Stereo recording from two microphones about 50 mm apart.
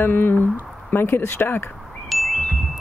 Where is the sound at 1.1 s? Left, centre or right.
Left.